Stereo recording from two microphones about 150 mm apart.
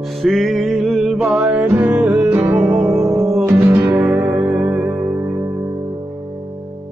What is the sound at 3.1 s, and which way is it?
Music, 20° right (ahead or behind).